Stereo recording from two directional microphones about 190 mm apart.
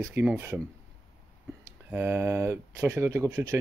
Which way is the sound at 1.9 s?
10° right (ahead or behind).